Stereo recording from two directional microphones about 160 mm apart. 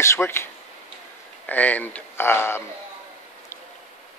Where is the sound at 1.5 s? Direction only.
10° left (ahead or behind).